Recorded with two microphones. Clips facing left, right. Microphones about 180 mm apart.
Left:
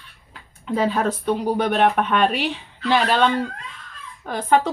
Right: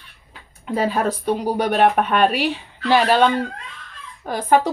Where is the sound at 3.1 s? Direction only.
45° right (ahead or behind).